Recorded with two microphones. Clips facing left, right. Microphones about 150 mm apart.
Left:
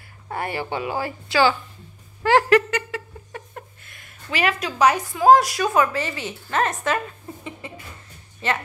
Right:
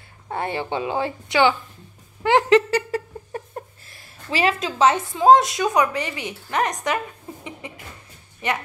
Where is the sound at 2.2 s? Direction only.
20° right (ahead or behind).